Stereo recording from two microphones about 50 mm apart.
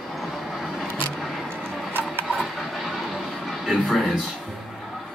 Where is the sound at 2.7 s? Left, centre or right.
Centre.